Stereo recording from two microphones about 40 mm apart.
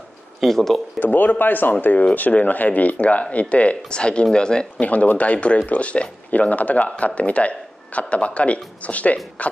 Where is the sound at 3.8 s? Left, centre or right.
Left.